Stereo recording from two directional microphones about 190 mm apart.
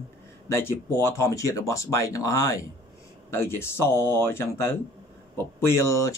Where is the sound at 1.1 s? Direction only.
15° left (ahead or behind).